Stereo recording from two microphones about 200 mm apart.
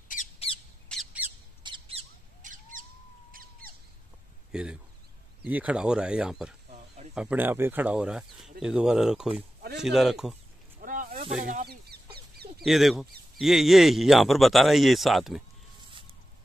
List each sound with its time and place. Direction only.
0.1 s squawk: 40° left (ahead or behind)
0.9 s squawk: 5° left (ahead or behind)
1.6 s squawk: 25° right (ahead or behind)
3.3 s a sound: 45° right (ahead or behind)
4.5 s speech: 5° right (ahead or behind)
10.8 s a sound: 45° right (ahead or behind)
11.4 s speech: 45° right (ahead or behind)
12.6 s speech: centre (ahead or behind)